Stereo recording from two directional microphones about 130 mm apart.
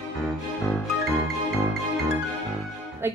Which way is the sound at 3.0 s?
20° right (ahead or behind).